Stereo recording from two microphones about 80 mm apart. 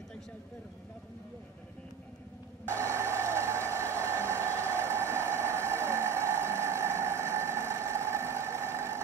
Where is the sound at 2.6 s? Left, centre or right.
Right.